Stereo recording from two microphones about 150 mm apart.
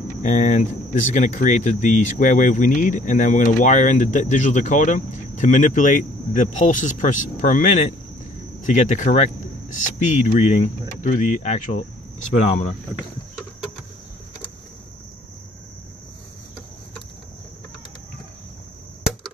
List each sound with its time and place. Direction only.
0.2 s speech: 55° left (ahead or behind)